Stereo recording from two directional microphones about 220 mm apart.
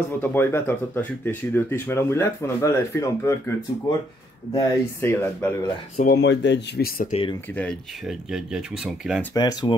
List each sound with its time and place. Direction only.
0.2 s speech: 10° left (ahead or behind)
5.9 s speech: 45° left (ahead or behind)
7.5 s speech: centre (ahead or behind)
9.3 s speech: 20° left (ahead or behind)